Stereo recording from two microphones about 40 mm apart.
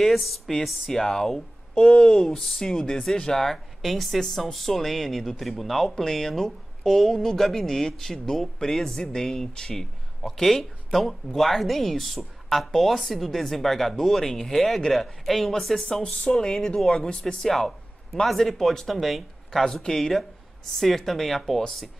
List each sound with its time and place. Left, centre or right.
0.5 s speech: centre
16.0 s speech: left; by 19.6 s centre
19.6 s speech: centre